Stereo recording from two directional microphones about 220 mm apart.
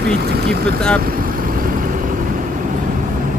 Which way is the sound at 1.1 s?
40° right (ahead or behind).